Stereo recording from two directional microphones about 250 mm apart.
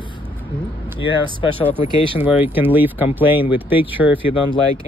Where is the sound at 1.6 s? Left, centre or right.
Centre.